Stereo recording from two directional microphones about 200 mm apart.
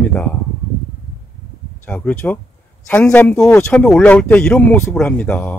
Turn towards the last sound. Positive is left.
turn(degrees=5)  # may be behind; listen again after turning